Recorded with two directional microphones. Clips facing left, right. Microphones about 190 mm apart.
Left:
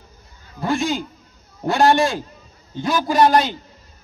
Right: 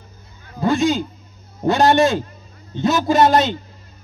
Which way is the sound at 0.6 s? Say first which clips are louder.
Right 4 dB; 20° right (ahead or behind).